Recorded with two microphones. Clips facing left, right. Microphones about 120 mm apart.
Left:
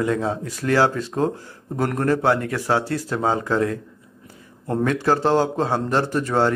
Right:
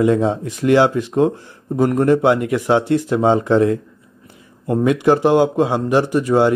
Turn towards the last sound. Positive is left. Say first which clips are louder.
# right 5 dB
turn(degrees=-15)  # may be behind; listen again after turning